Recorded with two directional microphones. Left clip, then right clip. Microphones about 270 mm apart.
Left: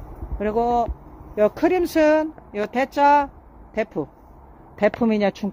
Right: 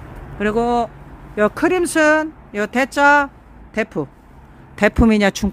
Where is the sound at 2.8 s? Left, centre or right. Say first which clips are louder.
Right 3 dB; centre.